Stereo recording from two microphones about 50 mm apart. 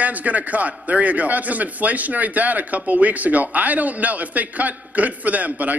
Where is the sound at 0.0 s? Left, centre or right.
Right.